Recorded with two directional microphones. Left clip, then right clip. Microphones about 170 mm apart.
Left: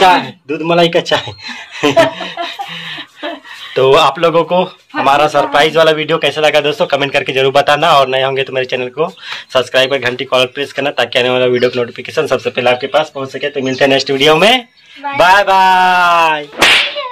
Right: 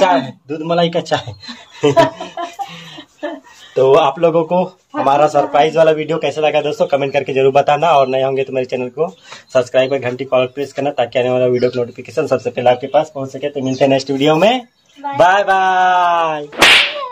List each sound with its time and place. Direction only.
0.7 s speech: 30° left (ahead or behind)
2.1 s laughter: centre (ahead or behind)
3.7 s speech: 5° left (ahead or behind)
15.1 s whip: 10° left (ahead or behind)